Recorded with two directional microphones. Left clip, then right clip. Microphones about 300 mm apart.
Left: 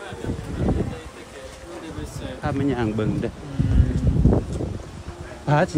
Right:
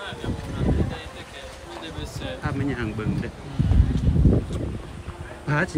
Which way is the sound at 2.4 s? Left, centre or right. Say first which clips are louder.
Left 6 dB; centre.